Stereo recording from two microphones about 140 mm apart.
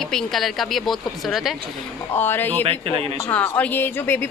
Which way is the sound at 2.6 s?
45° right (ahead or behind).